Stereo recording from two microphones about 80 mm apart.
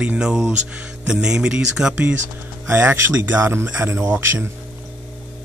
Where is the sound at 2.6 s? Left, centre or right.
Right.